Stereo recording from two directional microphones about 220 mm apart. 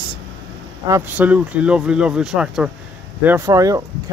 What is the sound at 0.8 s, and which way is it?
Speech, 10° right (ahead or behind).